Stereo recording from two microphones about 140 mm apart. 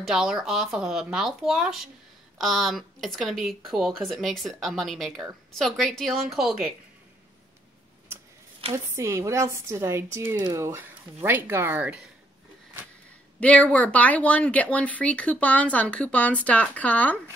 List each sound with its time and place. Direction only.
0.0 s speech: 5° right (ahead or behind)
8.7 s speech: 20° right (ahead or behind)
13.4 s speech: 10° left (ahead or behind)